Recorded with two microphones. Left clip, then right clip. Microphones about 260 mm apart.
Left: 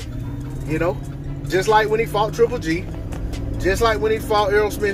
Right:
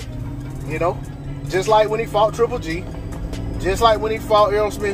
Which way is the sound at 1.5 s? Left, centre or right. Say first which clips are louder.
Right 1 dB; left.